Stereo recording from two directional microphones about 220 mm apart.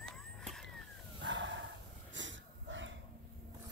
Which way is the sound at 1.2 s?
55° right (ahead or behind).